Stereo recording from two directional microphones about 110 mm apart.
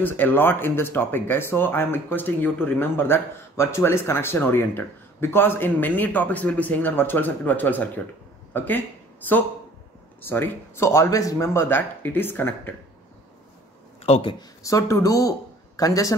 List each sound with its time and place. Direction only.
0.0 s speech: 15° left (ahead or behind)
14.1 s speech: 70° left (ahead or behind)
14.6 s speech: 30° left (ahead or behind)